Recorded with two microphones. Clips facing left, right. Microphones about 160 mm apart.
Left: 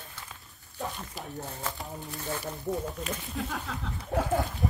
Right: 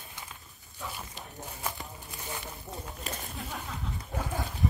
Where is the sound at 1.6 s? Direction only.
15° right (ahead or behind).